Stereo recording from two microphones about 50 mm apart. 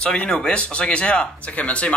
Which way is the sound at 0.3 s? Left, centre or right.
Centre.